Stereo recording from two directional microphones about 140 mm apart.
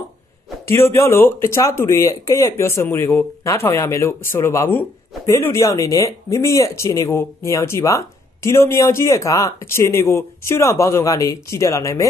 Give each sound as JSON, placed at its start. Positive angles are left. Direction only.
{"t": 0.7, "sound": "speech", "side_deg": 20}